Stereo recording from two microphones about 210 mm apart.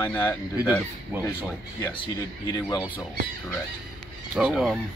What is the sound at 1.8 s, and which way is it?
Speech, 20° left (ahead or behind).